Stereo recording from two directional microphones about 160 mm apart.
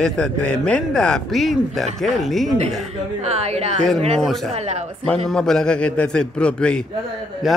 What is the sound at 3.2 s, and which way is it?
Speech, 40° right (ahead or behind).